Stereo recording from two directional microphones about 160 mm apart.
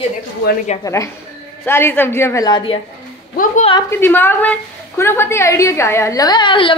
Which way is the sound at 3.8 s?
15° left (ahead or behind).